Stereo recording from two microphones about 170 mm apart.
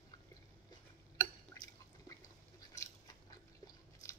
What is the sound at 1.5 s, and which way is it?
Drip, 20° left (ahead or behind).